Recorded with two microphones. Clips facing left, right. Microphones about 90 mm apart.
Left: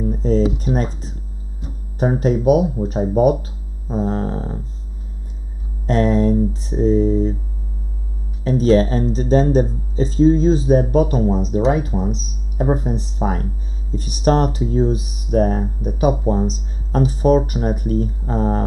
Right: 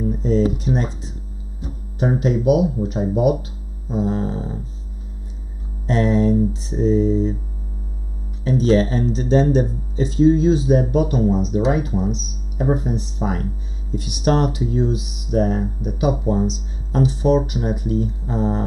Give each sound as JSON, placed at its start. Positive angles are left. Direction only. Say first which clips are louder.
{"t": 0.2, "sound": "a sound", "louder": "left 1 dB", "side_deg": 40}
{"t": 0.7, "sound": "speech", "louder": "left 1 dB", "side_deg": 65}
{"t": 2.0, "sound": "speech", "louder": "left 2 dB", "side_deg": 40}
{"t": 3.9, "sound": "mantra", "louder": "left 1 dB", "side_deg": 45}
{"t": 5.9, "sound": "mantra", "louder": "left 1 dB", "side_deg": 45}
{"t": 8.5, "sound": "speech", "louder": "left 2 dB", "side_deg": 45}